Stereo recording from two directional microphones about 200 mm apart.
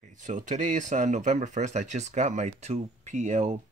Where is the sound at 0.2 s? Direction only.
40° right (ahead or behind).